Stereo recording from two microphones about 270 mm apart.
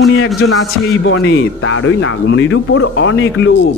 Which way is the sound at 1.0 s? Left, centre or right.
Left.